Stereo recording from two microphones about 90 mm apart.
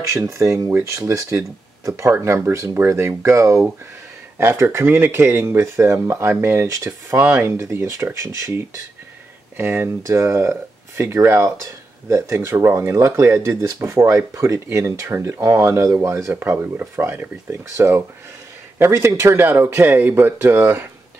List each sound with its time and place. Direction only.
0.0 s speech: 30° right (ahead or behind)